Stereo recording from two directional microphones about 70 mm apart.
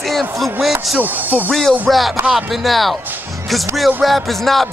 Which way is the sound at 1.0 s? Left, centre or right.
Right.